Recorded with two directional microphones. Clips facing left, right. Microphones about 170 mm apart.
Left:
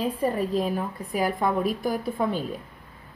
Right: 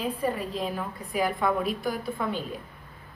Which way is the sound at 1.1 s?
40° left (ahead or behind).